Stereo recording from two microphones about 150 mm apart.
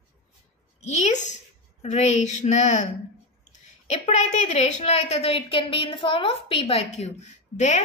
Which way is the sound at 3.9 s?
50° left (ahead or behind).